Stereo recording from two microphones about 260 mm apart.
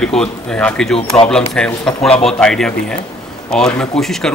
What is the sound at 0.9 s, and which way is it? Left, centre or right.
Speech, left.